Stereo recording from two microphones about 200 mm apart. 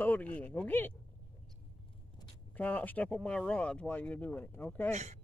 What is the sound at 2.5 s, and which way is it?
Speech, 10° left (ahead or behind).